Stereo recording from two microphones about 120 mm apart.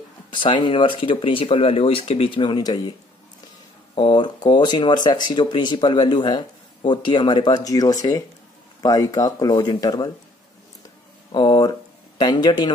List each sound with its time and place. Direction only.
0.3 s speech: 45° left (ahead or behind)
3.9 s speech: 40° left (ahead or behind)
11.3 s speech: 35° left (ahead or behind)